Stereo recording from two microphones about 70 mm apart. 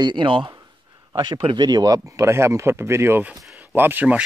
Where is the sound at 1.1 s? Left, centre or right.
Right.